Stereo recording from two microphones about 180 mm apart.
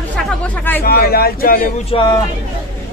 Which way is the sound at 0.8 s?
60° left (ahead or behind).